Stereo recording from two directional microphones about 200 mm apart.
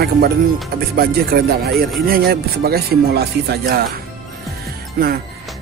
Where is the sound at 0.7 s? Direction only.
50° right (ahead or behind).